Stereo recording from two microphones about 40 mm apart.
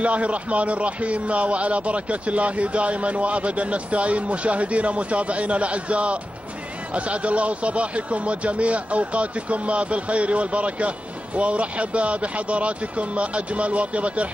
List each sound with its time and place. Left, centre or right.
0.0 s speech: right